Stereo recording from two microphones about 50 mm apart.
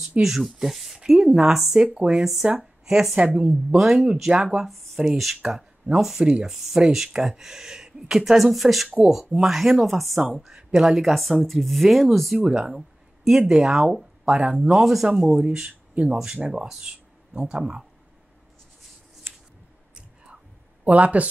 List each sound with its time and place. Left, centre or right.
0.2 s speech: centre
4.6 s speech: centre
6.2 s speech: centre
6.5 s speech: centre
10.5 s speech: centre
11.0 s speech: centre
12.4 s a sound: centre
13.5 s speech: centre
14.8 s speech: centre
20.8 s speech: right